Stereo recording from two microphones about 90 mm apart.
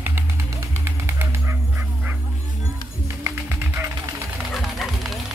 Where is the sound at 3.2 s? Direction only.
30° right (ahead or behind).